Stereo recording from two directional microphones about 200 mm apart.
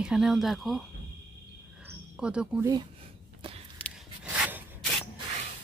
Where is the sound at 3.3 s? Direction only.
25° right (ahead or behind).